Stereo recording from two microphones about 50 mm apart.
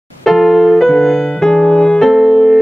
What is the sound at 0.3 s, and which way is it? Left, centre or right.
Music, centre.